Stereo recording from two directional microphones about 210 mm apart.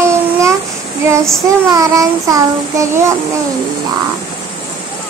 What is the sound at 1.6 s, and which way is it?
Child singing, 15° right (ahead or behind).